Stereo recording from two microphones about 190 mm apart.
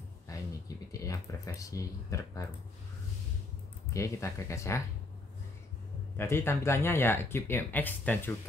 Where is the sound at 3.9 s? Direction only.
15° left (ahead or behind).